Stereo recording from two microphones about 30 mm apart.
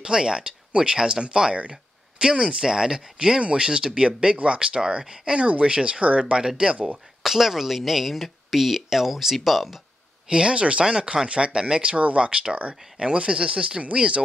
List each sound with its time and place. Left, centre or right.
0.0 s speech: right
3.3 s speech: right
6.3 s speech: right
7.2 s speech: centre
10.3 s speech: right